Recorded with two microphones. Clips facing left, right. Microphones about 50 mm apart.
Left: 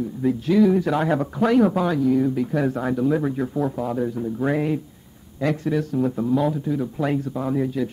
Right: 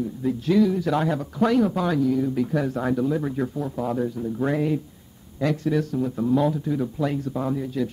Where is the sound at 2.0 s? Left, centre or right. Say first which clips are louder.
Left 3 dB; centre.